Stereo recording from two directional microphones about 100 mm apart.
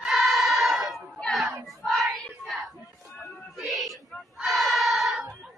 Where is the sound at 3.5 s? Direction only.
Centre (ahead or behind).